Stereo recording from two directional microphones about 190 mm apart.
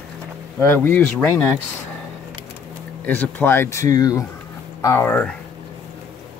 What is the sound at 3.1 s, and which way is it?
Speech, 10° left (ahead or behind).